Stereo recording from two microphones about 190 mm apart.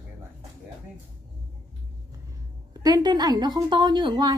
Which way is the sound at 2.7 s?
20° right (ahead or behind).